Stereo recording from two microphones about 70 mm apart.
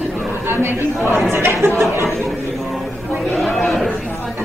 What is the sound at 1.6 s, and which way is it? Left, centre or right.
Speech, right.